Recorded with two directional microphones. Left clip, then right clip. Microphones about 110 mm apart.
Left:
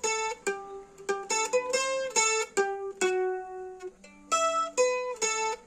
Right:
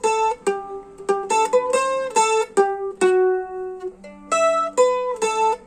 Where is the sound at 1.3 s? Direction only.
35° right (ahead or behind).